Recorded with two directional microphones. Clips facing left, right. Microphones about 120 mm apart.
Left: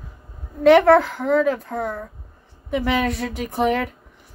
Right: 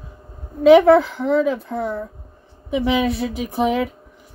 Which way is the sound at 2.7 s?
Centre (ahead or behind).